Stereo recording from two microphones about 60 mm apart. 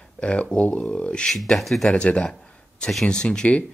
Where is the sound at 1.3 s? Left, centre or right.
Centre.